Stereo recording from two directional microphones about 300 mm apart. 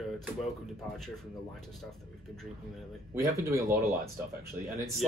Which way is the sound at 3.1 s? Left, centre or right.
Centre.